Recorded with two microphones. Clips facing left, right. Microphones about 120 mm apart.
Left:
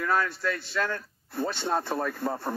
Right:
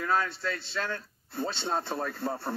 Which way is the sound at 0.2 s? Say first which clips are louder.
Left 3 dB; 50° left (ahead or behind).